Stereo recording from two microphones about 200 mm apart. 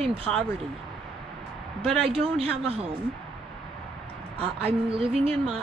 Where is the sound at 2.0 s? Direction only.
30° right (ahead or behind).